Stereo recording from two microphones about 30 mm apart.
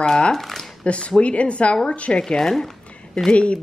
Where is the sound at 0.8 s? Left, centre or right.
Left.